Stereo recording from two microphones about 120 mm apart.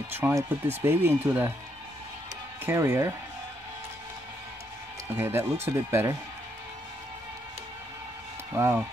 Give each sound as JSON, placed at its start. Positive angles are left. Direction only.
{"t": 0.2, "sound": "speech", "side_deg": -10}
{"t": 2.6, "sound": "speech", "side_deg": -20}
{"t": 5.1, "sound": "speech", "side_deg": -20}
{"t": 8.5, "sound": "speech", "side_deg": -20}